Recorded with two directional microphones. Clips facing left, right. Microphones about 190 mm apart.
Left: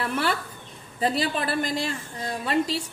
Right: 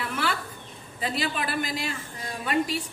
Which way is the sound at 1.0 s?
35° left (ahead or behind).